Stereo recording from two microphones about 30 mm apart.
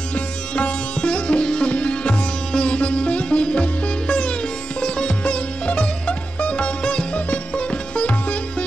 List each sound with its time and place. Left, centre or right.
0.1 s sitar: left
5.8 s music: left